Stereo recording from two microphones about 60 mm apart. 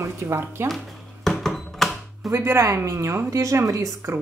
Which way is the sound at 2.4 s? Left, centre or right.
Right.